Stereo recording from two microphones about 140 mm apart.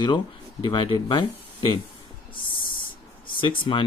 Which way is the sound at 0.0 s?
35° left (ahead or behind).